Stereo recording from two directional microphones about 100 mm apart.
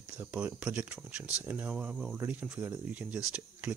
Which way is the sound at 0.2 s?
15° right (ahead or behind).